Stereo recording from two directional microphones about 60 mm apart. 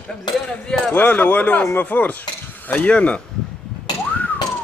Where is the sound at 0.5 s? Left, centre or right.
Centre.